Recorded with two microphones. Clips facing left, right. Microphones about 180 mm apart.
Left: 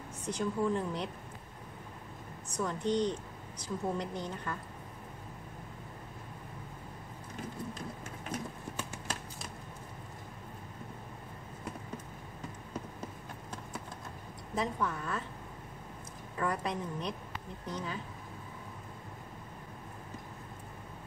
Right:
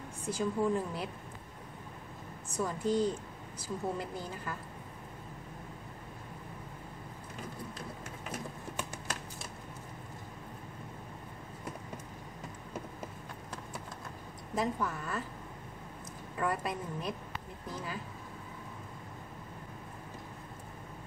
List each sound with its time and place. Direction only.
0.3 s a woman's voice: 5° right (ahead or behind)
2.6 s a woman's voice: 5° right (ahead or behind)
14.5 s a woman's voice: 5° right (ahead or behind)
16.3 s a woman's voice: 5° right (ahead or behind)